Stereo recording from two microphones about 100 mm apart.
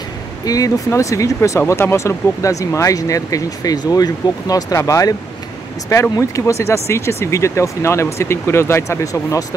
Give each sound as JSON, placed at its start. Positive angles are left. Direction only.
{"t": 0.5, "sound": "speech", "side_deg": 35}